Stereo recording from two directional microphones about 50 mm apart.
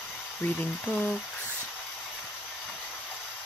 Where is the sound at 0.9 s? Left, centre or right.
Left.